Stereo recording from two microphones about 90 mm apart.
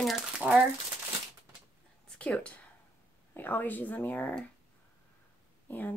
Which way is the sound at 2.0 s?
15° left (ahead or behind).